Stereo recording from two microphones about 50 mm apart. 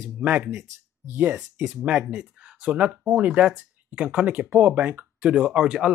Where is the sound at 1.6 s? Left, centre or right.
Centre; by 5.1 s right.